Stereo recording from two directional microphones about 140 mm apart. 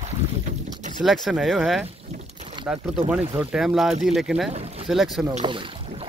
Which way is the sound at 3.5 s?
5° right (ahead or behind).